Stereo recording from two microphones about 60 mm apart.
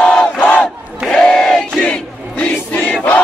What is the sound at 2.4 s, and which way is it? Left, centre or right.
Choir, left.